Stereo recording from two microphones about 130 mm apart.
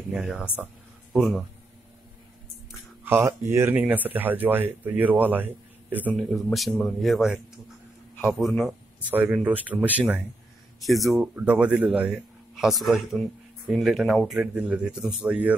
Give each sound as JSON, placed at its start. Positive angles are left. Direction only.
{"t": 0.1, "sound": "speech", "side_deg": -5}
{"t": 3.0, "sound": "speech", "side_deg": -20}
{"t": 6.1, "sound": "speech", "side_deg": 0}
{"t": 9.1, "sound": "speech", "side_deg": -15}
{"t": 10.8, "sound": "speech", "side_deg": 0}
{"t": 12.5, "sound": "speech", "side_deg": 0}